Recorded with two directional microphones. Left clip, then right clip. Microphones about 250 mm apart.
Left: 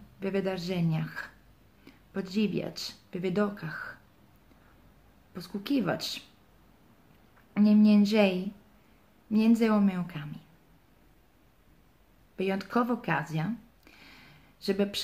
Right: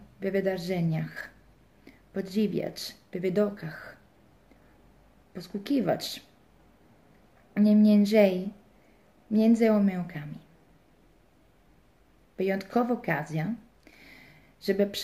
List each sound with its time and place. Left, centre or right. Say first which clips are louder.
0.2 s speech: right 3 dB; left
5.3 s speech: right 1 dB; left
7.5 s speech: right 1 dB; centre
12.4 s speech: right 2 dB; left
13.3 s a sound: right 1 dB; left